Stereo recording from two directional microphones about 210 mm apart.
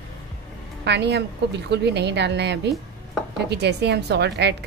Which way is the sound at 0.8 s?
55° right (ahead or behind).